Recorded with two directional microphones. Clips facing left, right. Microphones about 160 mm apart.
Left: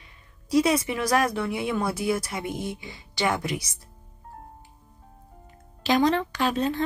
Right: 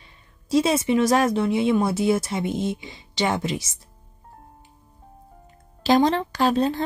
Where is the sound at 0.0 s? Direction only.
25° right (ahead or behind).